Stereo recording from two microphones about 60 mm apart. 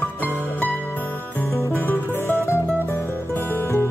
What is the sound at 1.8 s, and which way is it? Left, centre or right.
Music, left.